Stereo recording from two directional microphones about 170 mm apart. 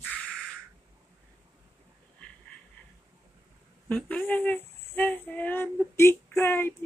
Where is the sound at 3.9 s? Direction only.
10° left (ahead or behind).